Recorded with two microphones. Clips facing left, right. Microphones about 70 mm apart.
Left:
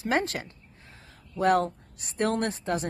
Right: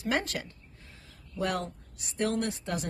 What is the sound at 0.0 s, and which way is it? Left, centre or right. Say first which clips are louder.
Speech: left 4 dB; left.